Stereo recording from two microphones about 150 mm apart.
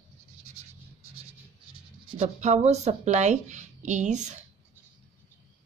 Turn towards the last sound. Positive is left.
turn(degrees=-55)  # may be behind; listen again after turning